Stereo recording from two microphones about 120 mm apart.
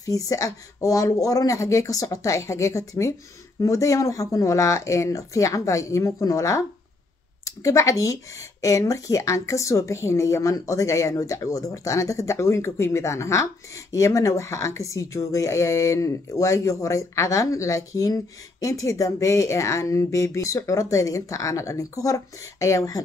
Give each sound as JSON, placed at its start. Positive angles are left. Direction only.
{"t": 0.0, "sound": "speech", "side_deg": 30}